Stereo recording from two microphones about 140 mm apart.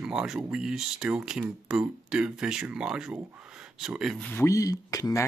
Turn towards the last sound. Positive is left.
turn(degrees=25)  # may be behind; listen again after turning